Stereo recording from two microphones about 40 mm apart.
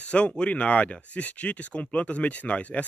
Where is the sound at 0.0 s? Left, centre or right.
Left.